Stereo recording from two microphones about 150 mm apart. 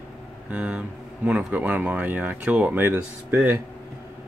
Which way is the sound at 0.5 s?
10° right (ahead or behind).